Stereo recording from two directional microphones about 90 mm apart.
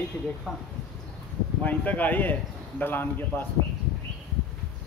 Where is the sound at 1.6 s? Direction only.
20° left (ahead or behind).